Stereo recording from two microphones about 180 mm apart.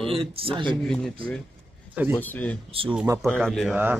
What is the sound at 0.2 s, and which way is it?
Speech, 30° right (ahead or behind).